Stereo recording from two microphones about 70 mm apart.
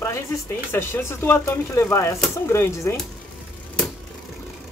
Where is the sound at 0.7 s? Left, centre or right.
Left.